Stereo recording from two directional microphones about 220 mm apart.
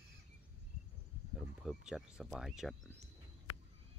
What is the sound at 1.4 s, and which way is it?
Speech, centre (ahead or behind).